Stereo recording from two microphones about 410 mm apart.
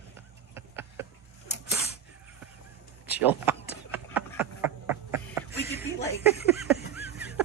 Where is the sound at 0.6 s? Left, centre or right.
Centre.